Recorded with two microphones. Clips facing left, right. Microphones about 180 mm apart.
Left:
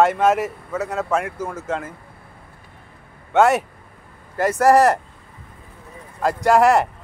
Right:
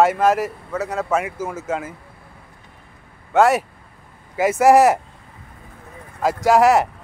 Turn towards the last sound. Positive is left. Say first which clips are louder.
# right 1 dB
turn(degrees=-5)  # may be behind; listen again after turning